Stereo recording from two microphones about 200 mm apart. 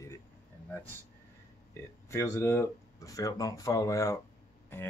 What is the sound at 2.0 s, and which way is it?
Speech, 15° left (ahead or behind).